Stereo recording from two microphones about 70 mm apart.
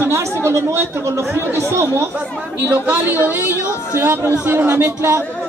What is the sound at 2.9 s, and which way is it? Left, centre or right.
Speech, right.